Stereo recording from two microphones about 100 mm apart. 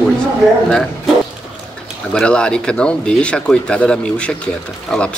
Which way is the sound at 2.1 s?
10° left (ahead or behind).